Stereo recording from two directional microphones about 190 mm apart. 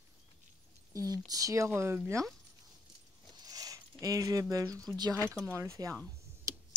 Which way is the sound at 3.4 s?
20° right (ahead or behind).